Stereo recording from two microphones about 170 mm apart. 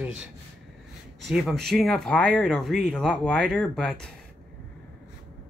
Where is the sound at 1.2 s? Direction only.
Centre (ahead or behind).